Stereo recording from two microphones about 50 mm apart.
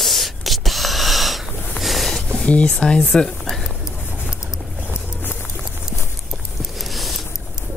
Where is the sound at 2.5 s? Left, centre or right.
Left.